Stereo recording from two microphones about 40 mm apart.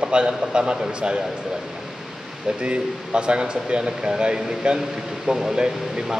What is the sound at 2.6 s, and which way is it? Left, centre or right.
Speech, right.